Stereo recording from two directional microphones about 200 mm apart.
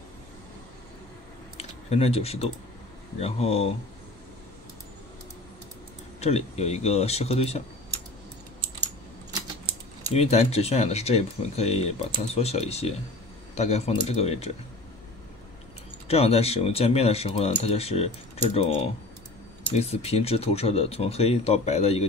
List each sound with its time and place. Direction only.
1.6 s a sound: 30° left (ahead or behind)
3.2 s speech: 30° left (ahead or behind)
6.2 s speech: 35° left (ahead or behind)
10.1 s speech: 30° left (ahead or behind)
16.1 s speech: 30° left (ahead or behind)